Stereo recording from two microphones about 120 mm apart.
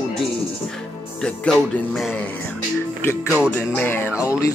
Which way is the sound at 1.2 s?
5° left (ahead or behind).